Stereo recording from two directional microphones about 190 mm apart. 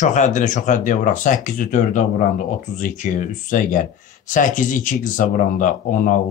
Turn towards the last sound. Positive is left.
turn(degrees=40)  # may be behind; listen again after turning